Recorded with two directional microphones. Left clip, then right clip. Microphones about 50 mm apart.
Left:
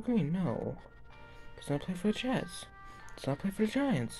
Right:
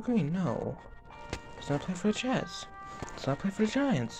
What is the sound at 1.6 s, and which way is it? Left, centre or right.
Speech, left.